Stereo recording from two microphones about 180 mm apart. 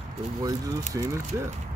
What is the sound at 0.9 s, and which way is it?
Speech, 15° right (ahead or behind).